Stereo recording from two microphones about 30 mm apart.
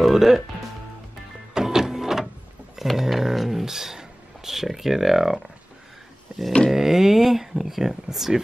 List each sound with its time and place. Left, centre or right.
0.0 s music: centre
1.5 s music: centre
2.8 s a sound: centre
4.5 s speech: centre
6.7 s speech: centre